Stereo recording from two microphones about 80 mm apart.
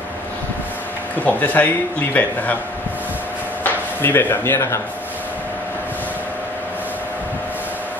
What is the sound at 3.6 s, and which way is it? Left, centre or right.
Speech, left.